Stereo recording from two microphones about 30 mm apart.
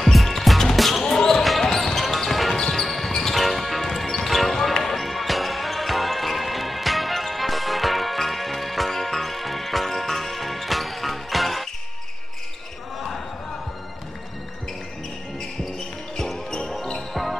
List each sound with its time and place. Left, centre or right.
0.0 s music: centre
1.0 s basketball bounce: centre
1.4 s basketball bounce: centre
1.7 s basketball bounce: centre
3.3 s music: centre
17.1 s music: centre